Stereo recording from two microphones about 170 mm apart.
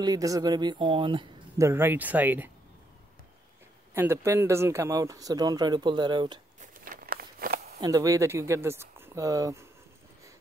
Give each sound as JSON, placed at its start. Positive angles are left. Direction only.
{"t": 0.0, "sound": "speech", "side_deg": -20}
{"t": 1.6, "sound": "speech", "side_deg": -15}
{"t": 3.9, "sound": "speech", "side_deg": -15}
{"t": 6.6, "sound": "a sound", "side_deg": -55}
{"t": 7.8, "sound": "speech", "side_deg": -20}